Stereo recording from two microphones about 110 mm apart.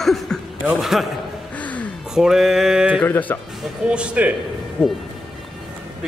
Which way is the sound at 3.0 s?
15° left (ahead or behind).